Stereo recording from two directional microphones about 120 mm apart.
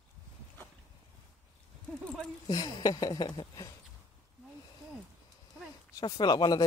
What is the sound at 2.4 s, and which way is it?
Speech, 35° left (ahead or behind).